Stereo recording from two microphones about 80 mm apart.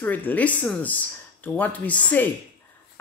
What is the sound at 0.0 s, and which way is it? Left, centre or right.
Speech, left.